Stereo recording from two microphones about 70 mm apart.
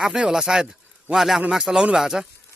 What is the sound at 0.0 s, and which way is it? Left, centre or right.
A man's voice, centre.